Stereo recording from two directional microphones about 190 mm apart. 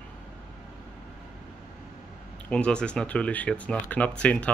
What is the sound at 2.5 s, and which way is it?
Speech, 5° left (ahead or behind).